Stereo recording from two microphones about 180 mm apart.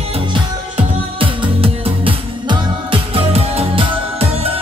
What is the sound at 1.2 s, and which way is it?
Music, 30° right (ahead or behind).